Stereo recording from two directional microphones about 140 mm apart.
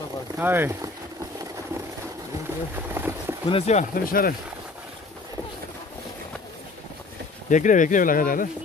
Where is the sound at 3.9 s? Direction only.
90° left.